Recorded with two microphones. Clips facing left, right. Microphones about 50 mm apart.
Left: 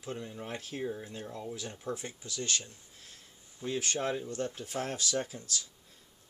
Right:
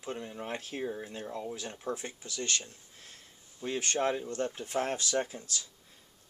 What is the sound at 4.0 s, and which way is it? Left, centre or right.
Speech, centre.